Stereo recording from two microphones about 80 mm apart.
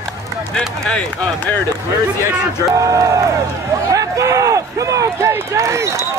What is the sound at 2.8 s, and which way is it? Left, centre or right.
Speech, right.